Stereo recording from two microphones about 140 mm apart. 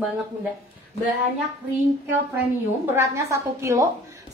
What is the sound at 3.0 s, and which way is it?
Speech, 20° right (ahead or behind).